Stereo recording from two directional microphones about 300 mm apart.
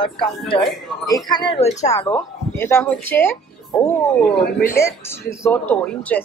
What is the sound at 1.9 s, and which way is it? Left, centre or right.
Speech, centre.